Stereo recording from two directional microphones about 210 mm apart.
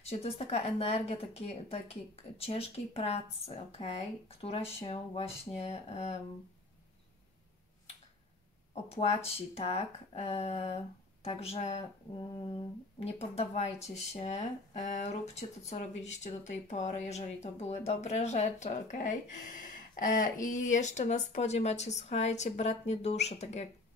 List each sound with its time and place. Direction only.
0.0 s speech: 30° left (ahead or behind)
8.8 s speech: 30° left (ahead or behind)
13.0 s speech: 30° left (ahead or behind)